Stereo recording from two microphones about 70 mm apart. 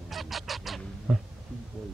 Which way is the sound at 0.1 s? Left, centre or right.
Centre.